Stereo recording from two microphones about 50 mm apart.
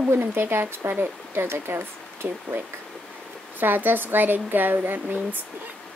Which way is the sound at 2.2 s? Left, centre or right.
Right.